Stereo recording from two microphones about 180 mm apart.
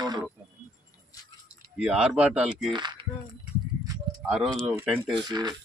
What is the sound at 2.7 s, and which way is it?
Speech, 25° right (ahead or behind).